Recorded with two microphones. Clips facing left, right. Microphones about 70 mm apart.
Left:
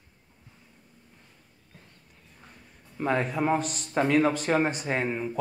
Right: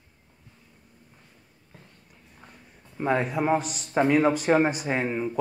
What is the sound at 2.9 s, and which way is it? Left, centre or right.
A man's voice, centre.